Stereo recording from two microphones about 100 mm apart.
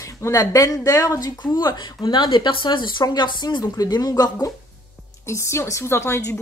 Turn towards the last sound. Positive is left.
turn(degrees=30)  # may be behind; listen again after turning